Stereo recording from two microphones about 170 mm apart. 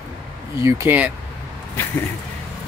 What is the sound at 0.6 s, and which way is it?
Speech, 15° right (ahead or behind).